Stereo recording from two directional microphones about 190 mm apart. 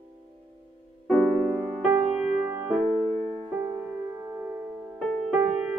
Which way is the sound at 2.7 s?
5° left (ahead or behind).